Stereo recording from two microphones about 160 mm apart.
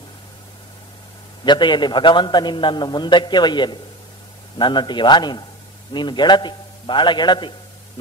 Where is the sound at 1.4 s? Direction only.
30° left (ahead or behind).